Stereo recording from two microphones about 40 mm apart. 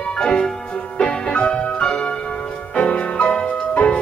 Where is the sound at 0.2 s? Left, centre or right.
Centre.